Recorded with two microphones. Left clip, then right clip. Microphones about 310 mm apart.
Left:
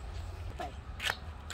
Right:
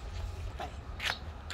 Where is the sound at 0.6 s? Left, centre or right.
Left.